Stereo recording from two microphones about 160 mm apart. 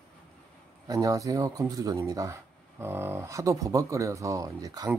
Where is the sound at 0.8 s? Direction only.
20° right (ahead or behind).